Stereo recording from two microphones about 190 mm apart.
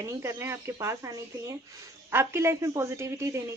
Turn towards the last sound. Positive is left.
turn(degrees=-15)  # may be behind; listen again after turning